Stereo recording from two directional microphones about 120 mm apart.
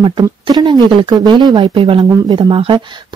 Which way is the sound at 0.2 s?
35° right (ahead or behind).